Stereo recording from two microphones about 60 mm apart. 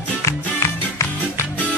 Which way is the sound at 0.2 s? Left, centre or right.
Left.